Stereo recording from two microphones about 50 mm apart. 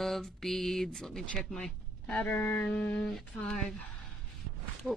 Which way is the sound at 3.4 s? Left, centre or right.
Centre.